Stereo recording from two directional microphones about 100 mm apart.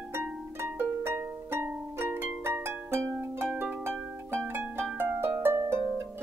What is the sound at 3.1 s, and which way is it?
Music, 20° right (ahead or behind).